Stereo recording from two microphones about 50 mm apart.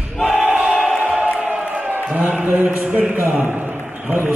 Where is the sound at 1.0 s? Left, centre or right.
Right.